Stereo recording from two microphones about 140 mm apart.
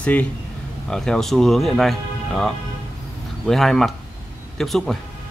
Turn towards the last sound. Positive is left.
turn(degrees=0)  # may be behind; listen again after turning